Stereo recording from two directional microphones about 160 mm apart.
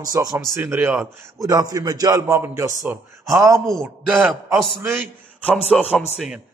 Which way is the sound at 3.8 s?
10° right (ahead or behind).